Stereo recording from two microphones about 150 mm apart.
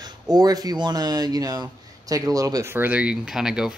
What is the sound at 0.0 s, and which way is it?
Speech, 25° right (ahead or behind).